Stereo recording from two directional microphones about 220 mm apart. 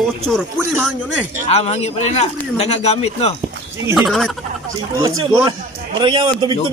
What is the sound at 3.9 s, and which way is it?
Speech, centre (ahead or behind).